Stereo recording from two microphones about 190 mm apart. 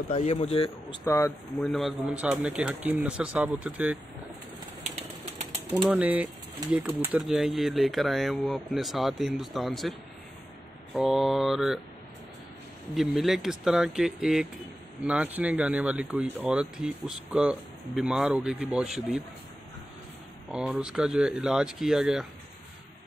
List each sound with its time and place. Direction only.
0.1 s speech: 35° left (ahead or behind)
1.0 s speech: 15° left (ahead or behind)
1.6 s speech: centre (ahead or behind)
4.8 s bird: 35° right (ahead or behind)
5.9 s speech: 5° right (ahead or behind)
12.9 s speech: centre (ahead or behind)
20.5 s speech: 5° right (ahead or behind)